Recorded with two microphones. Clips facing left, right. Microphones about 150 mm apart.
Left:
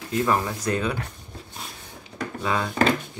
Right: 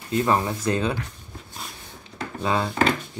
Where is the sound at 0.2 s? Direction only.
20° right (ahead or behind).